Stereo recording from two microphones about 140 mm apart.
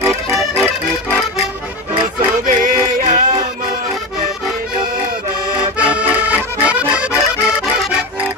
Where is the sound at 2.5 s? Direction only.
70° right (ahead or behind).